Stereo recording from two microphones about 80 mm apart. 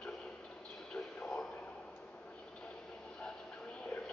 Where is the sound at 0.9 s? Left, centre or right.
Centre.